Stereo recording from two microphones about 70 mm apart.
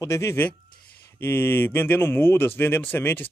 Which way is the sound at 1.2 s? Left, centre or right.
Left.